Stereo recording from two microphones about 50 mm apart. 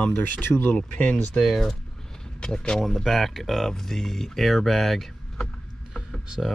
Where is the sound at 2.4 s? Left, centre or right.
Centre.